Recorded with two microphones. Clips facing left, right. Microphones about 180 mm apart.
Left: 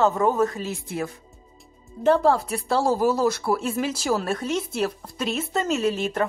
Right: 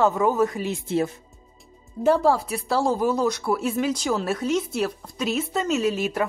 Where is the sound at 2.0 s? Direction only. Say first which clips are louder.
Even; 5° right (ahead or behind).